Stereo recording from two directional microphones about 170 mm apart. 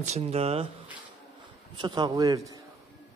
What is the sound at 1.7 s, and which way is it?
Speech, 25° right (ahead or behind).